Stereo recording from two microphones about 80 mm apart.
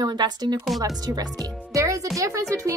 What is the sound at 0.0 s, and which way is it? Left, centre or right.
A woman's voice, right.